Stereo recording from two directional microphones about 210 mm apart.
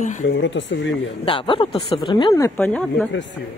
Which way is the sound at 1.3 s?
25° left (ahead or behind).